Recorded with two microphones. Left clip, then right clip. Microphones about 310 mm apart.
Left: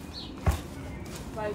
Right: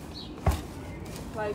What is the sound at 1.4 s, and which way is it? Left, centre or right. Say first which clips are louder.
Speech: right 1 dB; centre.